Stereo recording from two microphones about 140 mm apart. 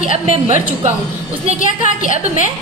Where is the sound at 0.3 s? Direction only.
55° right (ahead or behind).